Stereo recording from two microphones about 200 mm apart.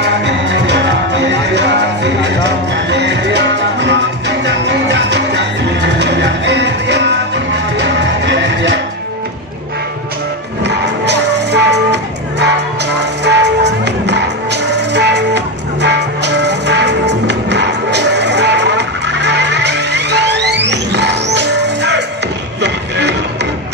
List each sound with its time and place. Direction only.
0.0 s music: 60° right (ahead or behind)
10.6 s music: 60° right (ahead or behind)